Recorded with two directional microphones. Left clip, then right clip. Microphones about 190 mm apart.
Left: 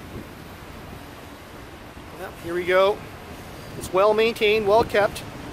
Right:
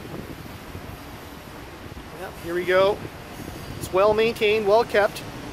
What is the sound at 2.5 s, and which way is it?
Speech, 10° left (ahead or behind).